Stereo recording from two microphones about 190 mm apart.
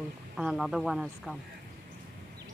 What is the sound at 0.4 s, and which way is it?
Speech, 5° right (ahead or behind).